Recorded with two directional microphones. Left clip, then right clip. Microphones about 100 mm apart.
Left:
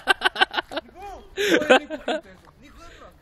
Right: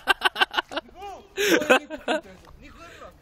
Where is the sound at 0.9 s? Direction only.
85° left.